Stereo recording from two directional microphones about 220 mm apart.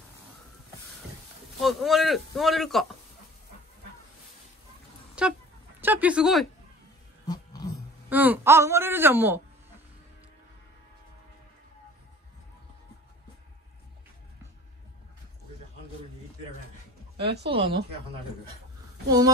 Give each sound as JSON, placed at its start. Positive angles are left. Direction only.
{"t": 1.6, "sound": "speech", "side_deg": 0}
{"t": 5.2, "sound": "speech", "side_deg": -5}
{"t": 7.2, "sound": "a sound", "side_deg": 15}
{"t": 8.1, "sound": "speech", "side_deg": -10}
{"t": 17.5, "sound": "speech", "side_deg": -25}
{"t": 19.0, "sound": "speech", "side_deg": -15}